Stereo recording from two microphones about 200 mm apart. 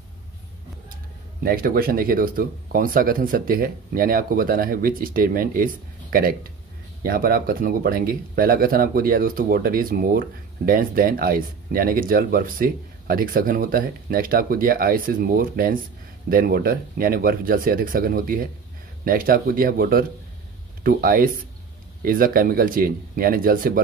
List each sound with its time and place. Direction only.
1.4 s speech: 45° right (ahead or behind)